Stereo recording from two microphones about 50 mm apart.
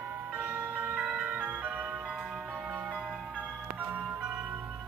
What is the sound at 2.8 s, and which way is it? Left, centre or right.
Music, centre.